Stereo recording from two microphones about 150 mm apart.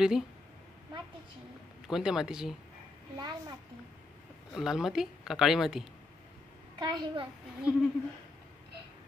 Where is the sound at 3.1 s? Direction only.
30° right (ahead or behind).